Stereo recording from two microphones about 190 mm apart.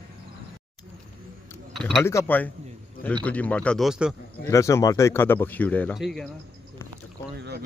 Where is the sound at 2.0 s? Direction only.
10° left (ahead or behind).